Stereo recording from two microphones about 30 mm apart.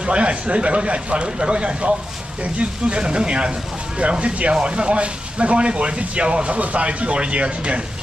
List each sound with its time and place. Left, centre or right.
0.0 s speech: right
6.5 s speech: right